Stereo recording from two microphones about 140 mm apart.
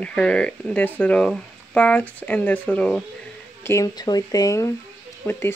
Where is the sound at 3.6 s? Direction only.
25° left (ahead or behind).